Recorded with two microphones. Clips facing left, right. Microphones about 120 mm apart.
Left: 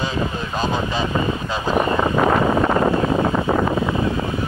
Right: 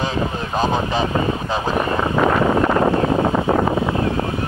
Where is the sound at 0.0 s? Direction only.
20° right (ahead or behind).